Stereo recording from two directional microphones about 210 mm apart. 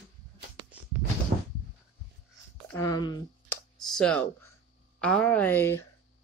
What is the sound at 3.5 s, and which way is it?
Computer keyboard, 5° left (ahead or behind).